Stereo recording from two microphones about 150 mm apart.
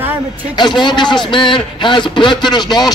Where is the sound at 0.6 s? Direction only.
30° left (ahead or behind).